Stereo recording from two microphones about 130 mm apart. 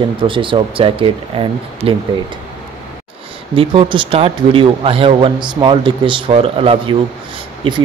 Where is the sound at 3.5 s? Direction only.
45° right (ahead or behind).